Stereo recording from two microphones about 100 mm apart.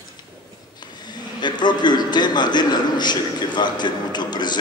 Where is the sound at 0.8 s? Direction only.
45° left (ahead or behind).